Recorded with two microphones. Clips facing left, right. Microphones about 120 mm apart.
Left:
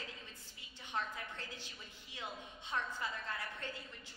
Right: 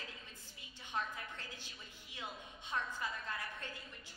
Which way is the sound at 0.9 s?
15° right (ahead or behind).